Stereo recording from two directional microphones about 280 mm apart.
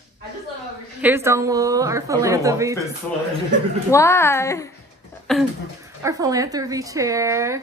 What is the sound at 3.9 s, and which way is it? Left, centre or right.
Speech, centre.